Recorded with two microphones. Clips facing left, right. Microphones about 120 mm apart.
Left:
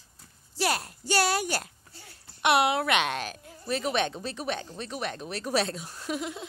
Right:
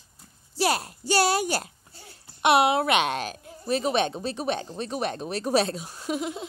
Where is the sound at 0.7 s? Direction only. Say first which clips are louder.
Right 3 dB; 30° right (ahead or behind).